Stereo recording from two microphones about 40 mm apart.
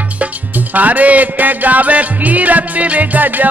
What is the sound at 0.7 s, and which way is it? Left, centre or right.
Music, right.